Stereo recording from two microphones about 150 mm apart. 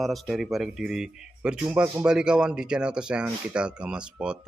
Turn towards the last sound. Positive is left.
turn(degrees=-5)  # may be behind; listen again after turning